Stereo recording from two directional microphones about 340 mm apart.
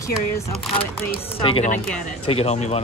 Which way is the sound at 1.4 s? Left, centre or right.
Centre.